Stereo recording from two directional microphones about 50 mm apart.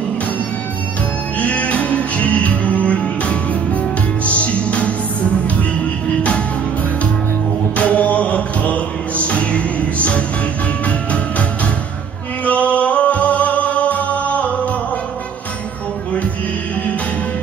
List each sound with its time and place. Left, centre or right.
1.4 s music: left
7.7 s music: left
12.4 s music: left